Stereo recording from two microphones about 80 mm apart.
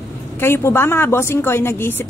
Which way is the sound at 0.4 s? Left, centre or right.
Left.